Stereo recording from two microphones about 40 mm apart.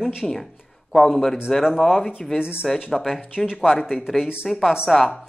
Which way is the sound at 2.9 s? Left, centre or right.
Centre.